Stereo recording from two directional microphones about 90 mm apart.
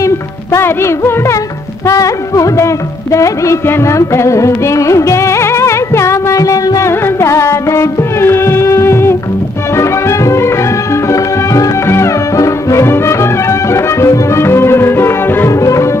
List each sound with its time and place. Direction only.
0.0 s music: 30° left (ahead or behind)